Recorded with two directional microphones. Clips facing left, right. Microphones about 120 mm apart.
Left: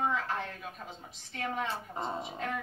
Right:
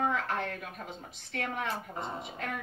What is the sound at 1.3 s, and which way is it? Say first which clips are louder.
Speech: right 1 dB; 65° right (ahead or behind).